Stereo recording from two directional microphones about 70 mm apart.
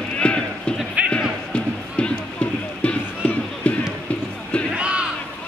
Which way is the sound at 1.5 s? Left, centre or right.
Centre.